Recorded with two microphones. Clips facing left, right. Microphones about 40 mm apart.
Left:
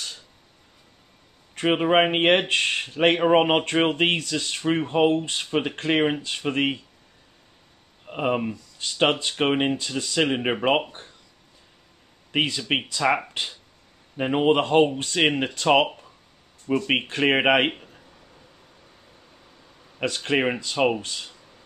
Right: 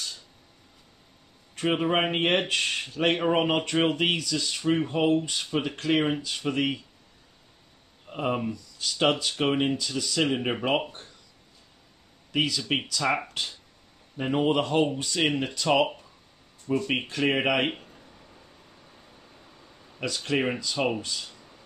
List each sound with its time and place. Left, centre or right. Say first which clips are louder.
1.7 s speech: left 5 dB; left
4.6 s speech: left 3 dB; left
8.1 s speech: left 4 dB; left
9.8 s speech: left 3 dB; left
12.3 s speech: left 3 dB; left
17.6 s a sound: left 3 dB; centre
20.0 s speech: left 4 dB; left